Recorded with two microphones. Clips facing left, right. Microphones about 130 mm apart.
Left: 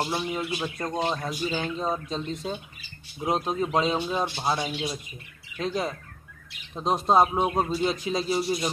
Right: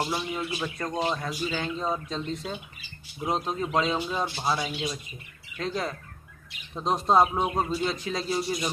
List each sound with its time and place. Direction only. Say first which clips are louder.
0.1 s speech: left 2 dB; 20° left (ahead or behind)
3.3 s speech: left 2 dB; 15° left (ahead or behind)